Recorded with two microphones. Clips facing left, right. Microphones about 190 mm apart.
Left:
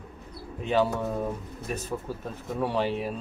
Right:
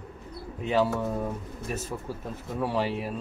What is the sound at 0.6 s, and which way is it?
Speech, centre (ahead or behind).